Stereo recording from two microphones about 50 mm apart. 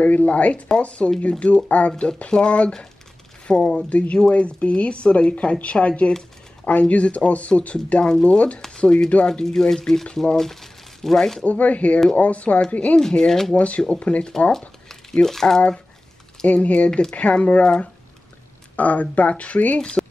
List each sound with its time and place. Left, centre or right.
0.0 s speech: left
8.5 s a sound: centre
8.8 s speech: centre
11.4 s speech: left
13.0 s speech: centre
13.5 s speech: left
15.2 s speech: centre
16.4 s speech: left
18.8 s speech: left